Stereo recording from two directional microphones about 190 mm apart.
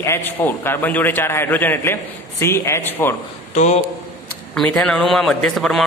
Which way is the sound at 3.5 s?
40° left (ahead or behind).